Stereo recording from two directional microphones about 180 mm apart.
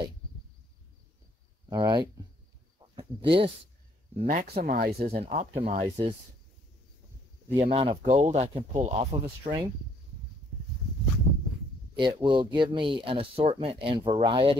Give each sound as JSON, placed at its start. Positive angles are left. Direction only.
{"t": 1.7, "sound": "speech", "side_deg": -25}
{"t": 4.2, "sound": "speech", "side_deg": -50}
{"t": 5.0, "sound": "speech", "side_deg": -35}
{"t": 7.6, "sound": "speech", "side_deg": -30}
{"t": 8.2, "sound": "speech", "side_deg": -40}
{"t": 12.0, "sound": "speech", "side_deg": -25}